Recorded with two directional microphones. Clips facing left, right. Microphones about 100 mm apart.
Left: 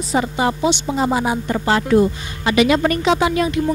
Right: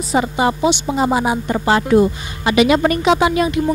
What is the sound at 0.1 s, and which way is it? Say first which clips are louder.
Speech: right 2 dB; 25° right (ahead or behind).